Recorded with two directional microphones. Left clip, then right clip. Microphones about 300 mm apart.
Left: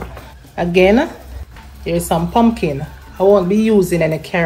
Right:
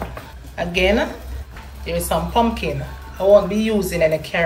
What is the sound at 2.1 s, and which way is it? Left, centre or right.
Speech, centre.